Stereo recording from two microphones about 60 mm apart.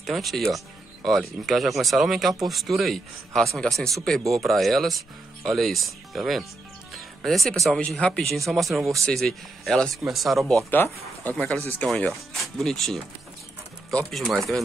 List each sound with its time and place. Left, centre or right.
0.0 s speech: centre
6.9 s music: centre
7.9 s speech: centre
10.7 s speech: left
11.3 s speech: centre
12.1 s speech: centre
14.1 s speech: centre